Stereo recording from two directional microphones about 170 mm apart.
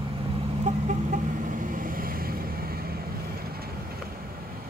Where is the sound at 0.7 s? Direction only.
45° right (ahead or behind).